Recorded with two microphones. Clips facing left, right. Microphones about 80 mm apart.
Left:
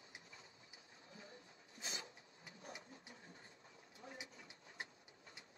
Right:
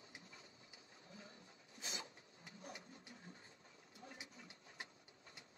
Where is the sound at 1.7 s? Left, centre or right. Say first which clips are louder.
Left 1 dB; left.